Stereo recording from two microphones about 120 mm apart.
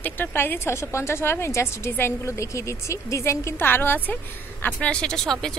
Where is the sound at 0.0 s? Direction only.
15° left (ahead or behind).